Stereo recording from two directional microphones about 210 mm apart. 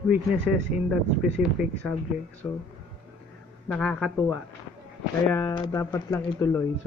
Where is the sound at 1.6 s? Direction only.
5° right (ahead or behind).